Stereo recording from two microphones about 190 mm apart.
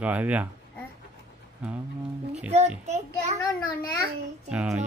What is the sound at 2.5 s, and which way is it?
Speech, 35° right (ahead or behind).